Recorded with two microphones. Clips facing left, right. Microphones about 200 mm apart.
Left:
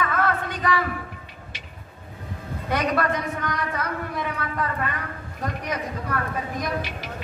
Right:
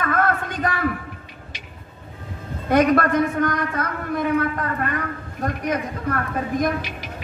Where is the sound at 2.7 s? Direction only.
50° right (ahead or behind).